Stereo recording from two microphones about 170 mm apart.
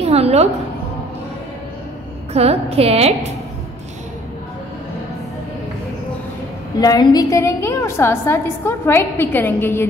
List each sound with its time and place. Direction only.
0.0 s a woman's voice: 35° right (ahead or behind)
2.3 s a woman's voice: 35° right (ahead or behind)
6.8 s a woman's voice: 25° left (ahead or behind)